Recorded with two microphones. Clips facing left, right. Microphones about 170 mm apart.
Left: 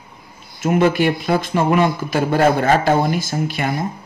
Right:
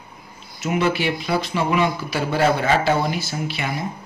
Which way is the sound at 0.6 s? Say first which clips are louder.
Left 6 dB; 50° left (ahead or behind).